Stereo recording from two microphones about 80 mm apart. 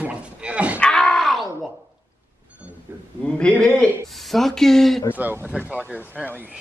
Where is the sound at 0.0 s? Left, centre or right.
Centre.